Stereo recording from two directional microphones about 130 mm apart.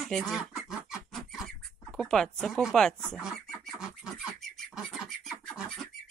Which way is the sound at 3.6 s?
Centre (ahead or behind).